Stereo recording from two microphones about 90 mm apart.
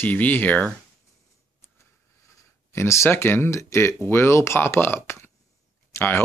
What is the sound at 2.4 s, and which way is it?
Speech, 30° left (ahead or behind).